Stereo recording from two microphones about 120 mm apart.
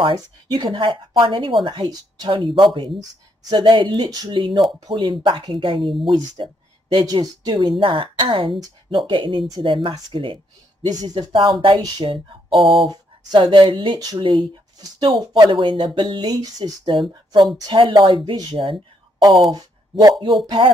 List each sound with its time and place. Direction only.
0.0 s speech: 40° right (ahead or behind)
12.5 s speech: centre (ahead or behind)
12.8 s speech: 35° right (ahead or behind)
19.5 s speech: 35° right (ahead or behind)